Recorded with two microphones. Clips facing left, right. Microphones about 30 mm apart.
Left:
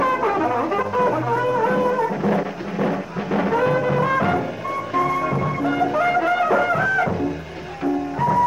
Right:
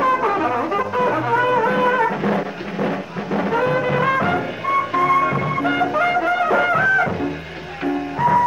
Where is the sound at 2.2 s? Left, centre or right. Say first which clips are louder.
Even; centre.